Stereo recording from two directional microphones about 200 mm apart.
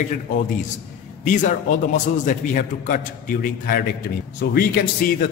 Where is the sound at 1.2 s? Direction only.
40° left (ahead or behind).